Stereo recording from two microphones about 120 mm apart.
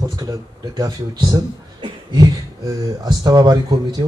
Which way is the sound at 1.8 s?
30° right (ahead or behind).